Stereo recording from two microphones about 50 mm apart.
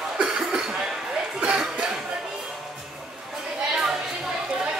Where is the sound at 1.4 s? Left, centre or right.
Centre.